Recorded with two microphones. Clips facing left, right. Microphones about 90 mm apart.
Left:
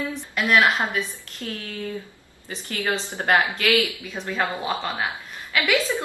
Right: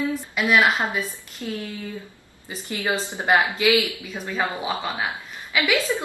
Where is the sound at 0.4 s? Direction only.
Centre (ahead or behind).